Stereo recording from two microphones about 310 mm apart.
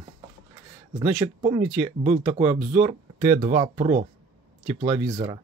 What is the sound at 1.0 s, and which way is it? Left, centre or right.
Speech, centre.